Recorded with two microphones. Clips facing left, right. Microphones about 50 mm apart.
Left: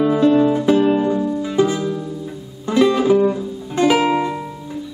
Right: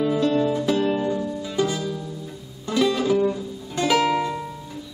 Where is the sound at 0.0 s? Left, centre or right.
Left.